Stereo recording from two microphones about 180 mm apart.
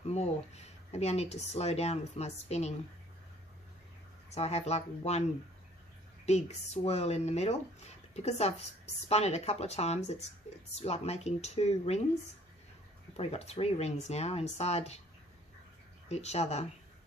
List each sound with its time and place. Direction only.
0.0 s speech: 35° left (ahead or behind)
4.3 s speech: 35° left (ahead or behind)
6.2 s speech: 40° left (ahead or behind)
13.1 s speech: 35° left (ahead or behind)
16.1 s speech: 35° left (ahead or behind)